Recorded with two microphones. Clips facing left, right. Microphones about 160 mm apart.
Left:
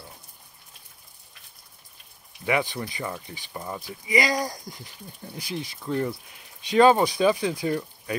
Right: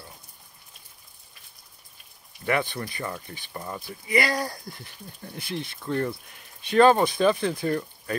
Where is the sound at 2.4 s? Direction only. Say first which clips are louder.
Left 1 dB; 15° left (ahead or behind).